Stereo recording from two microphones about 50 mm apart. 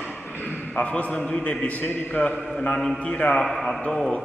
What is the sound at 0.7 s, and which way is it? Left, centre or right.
A man's voice, left.